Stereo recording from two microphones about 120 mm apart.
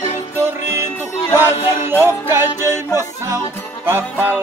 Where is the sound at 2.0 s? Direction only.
20° right (ahead or behind).